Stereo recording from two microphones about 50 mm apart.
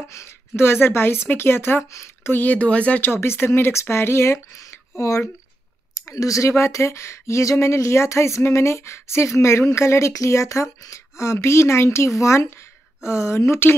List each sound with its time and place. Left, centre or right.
0.1 s speech: left
2.2 s speech: left
3.2 s speech: left
4.9 s speech: left
6.0 s speech: left